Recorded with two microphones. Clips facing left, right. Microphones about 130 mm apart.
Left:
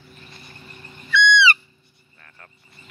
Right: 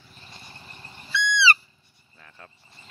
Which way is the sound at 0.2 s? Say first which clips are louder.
Even; 25° right (ahead or behind).